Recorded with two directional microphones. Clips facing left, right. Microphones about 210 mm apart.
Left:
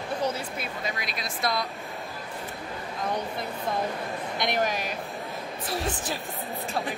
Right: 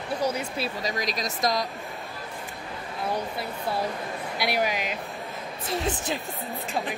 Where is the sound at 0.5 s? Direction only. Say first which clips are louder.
Right 4 dB; 35° right (ahead or behind).